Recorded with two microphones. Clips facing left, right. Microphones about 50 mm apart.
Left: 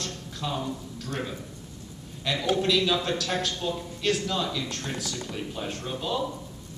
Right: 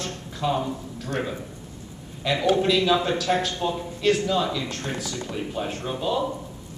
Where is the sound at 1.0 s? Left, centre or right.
Right.